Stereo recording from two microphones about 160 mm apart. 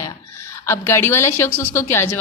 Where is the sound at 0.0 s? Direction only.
15° left (ahead or behind).